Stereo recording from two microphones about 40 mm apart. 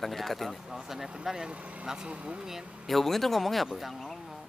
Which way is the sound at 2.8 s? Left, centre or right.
Centre.